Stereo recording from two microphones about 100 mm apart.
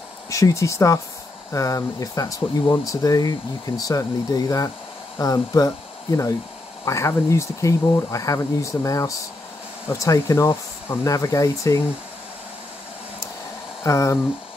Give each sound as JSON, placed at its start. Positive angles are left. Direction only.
{"t": 0.3, "sound": "speech", "side_deg": 35}
{"t": 6.8, "sound": "speech", "side_deg": 30}
{"t": 13.8, "sound": "speech", "side_deg": 30}